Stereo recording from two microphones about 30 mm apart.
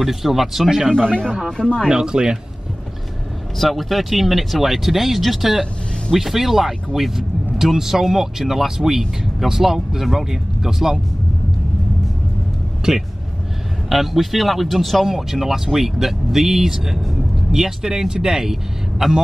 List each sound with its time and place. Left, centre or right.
0.0 s speech: centre
0.7 s speech: right
0.9 s speech: left
1.9 s speech: right
3.5 s speech: centre
13.8 s speech: centre